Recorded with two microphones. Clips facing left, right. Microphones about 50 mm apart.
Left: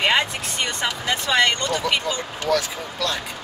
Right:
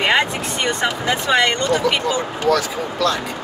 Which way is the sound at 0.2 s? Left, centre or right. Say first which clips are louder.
Right 4 dB; centre.